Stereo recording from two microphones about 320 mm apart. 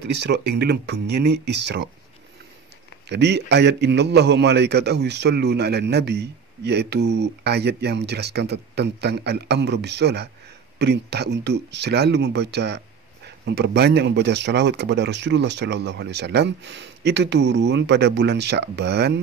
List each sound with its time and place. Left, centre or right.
0.2 s a man's voice: right
3.1 s a man's voice: right